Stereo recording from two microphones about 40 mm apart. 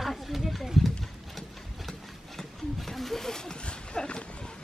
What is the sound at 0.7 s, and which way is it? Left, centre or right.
Clip-clop, centre.